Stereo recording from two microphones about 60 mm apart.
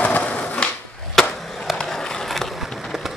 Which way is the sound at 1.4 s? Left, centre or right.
Centre.